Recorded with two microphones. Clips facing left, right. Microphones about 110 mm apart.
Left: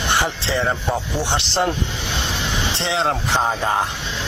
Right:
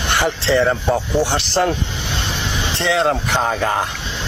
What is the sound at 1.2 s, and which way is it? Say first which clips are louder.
Speech: right 3 dB; 25° left (ahead or behind).